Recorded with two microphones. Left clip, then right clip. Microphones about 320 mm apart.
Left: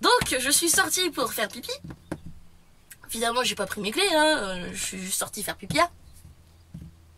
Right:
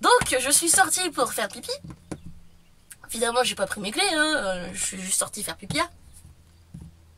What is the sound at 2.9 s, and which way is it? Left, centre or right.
Speech, centre.